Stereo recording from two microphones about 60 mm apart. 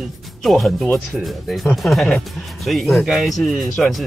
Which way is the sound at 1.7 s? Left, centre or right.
Centre.